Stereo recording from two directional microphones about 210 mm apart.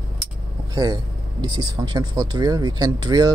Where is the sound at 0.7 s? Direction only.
20° right (ahead or behind).